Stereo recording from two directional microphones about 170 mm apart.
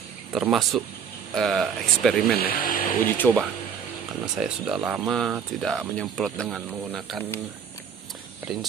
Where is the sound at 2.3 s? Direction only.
60° left (ahead or behind).